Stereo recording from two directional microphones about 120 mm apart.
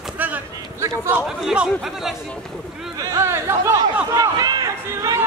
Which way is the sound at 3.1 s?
25° right (ahead or behind).